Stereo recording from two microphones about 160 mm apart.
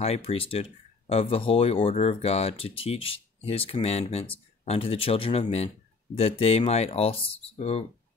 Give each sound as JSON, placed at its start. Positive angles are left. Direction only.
{"t": 0.0, "sound": "speech", "side_deg": 40}